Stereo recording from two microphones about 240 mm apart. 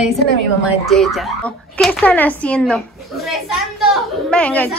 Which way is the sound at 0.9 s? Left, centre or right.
Centre.